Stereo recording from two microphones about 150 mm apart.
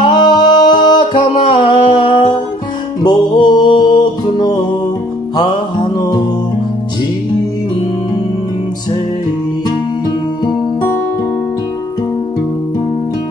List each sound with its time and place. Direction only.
0.0 s music: 30° left (ahead or behind)
5.3 s music: 25° left (ahead or behind)